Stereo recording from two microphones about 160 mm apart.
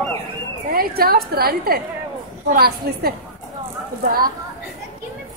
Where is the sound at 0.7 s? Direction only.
70° right (ahead or behind).